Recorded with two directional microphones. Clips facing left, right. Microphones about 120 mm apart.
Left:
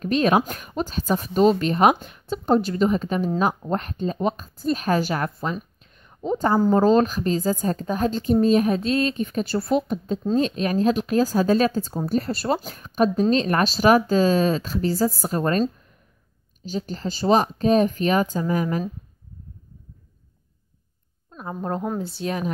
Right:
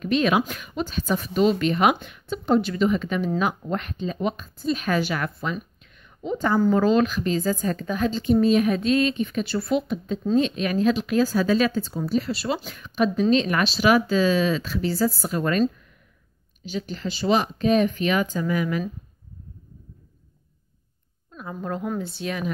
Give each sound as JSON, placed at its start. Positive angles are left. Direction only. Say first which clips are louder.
{"t": 0.0, "sound": "speech", "louder": "left 2 dB", "side_deg": 40}
{"t": 21.4, "sound": "speech", "louder": "left 2 dB", "side_deg": 35}